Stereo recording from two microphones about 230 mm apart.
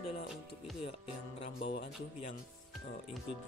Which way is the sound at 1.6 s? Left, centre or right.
Left.